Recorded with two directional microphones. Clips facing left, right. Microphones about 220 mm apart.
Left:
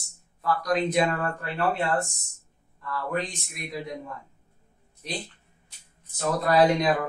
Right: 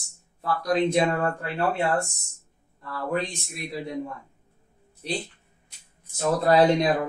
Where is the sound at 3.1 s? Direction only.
30° right (ahead or behind).